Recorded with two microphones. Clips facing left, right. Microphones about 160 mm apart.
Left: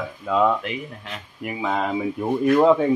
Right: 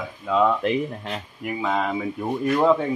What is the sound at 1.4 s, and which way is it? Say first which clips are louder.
Speech: even; 5° left (ahead or behind).